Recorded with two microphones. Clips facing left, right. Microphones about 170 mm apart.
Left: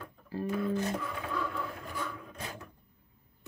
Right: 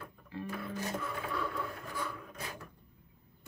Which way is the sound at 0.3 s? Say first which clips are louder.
Left 8 dB; 35° left (ahead or behind).